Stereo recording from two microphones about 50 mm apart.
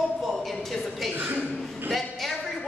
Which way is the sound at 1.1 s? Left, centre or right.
Right.